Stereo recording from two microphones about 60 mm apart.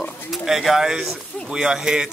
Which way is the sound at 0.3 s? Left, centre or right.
Centre.